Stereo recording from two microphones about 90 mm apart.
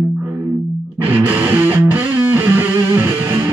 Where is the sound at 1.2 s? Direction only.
20° right (ahead or behind).